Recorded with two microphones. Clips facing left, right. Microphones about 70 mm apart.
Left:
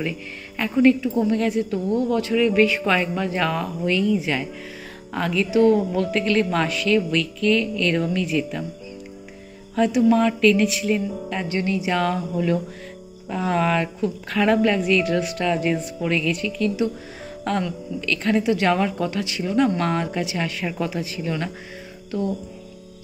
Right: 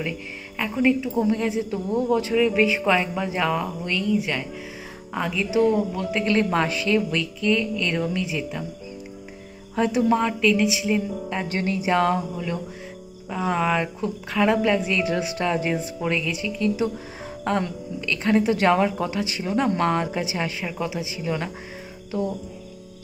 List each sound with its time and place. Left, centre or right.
0.6 s a woman's voice: centre
5.1 s a woman's voice: centre
6.2 s a woman's voice: right
9.8 s speech: right
10.4 s a woman's voice: centre
11.5 s speech: right
13.3 s a woman's voice: centre
14.8 s speech: centre
20.6 s a woman's voice: centre